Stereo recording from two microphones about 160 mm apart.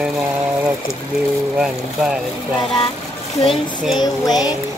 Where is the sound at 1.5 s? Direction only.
5° right (ahead or behind).